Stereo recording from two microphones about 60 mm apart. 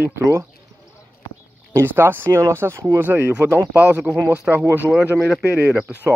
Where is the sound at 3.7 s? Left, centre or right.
Right.